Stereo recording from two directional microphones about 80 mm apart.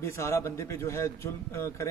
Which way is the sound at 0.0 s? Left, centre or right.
Left.